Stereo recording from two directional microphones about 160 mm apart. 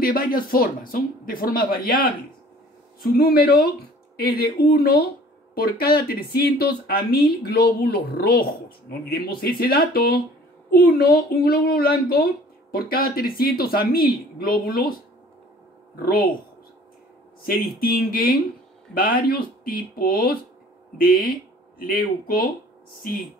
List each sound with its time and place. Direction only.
0.0 s speech: 65° left (ahead or behind)
17.4 s speech: 70° left (ahead or behind)